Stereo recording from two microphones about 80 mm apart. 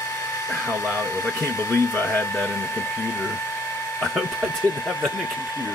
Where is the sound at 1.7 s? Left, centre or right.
Left.